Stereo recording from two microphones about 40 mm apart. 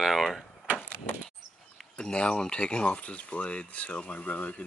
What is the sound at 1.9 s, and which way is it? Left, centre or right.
Speech, left.